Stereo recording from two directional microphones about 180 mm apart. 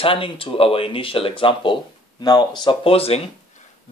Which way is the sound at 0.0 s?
30° left (ahead or behind).